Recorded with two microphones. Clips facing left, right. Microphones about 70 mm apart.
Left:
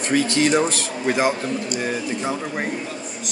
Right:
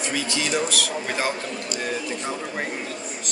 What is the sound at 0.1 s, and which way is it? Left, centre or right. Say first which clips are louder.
Speech: left 9 dB; left.